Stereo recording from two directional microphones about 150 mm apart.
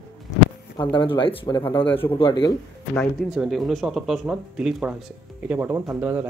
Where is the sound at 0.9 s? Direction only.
35° left (ahead or behind).